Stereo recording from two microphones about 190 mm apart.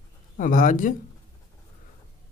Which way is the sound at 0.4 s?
45° left (ahead or behind).